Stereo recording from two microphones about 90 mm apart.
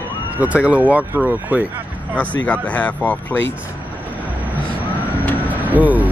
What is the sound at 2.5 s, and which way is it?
Speech, 15° left (ahead or behind).